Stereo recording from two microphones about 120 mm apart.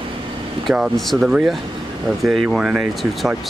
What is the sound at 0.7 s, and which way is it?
Speech, centre (ahead or behind).